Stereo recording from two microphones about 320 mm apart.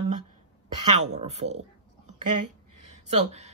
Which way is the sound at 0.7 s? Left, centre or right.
Right.